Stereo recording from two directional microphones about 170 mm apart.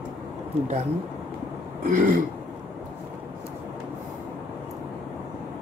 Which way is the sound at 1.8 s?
45° right (ahead or behind).